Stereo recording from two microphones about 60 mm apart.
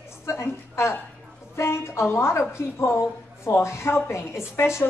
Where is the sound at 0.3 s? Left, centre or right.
Left.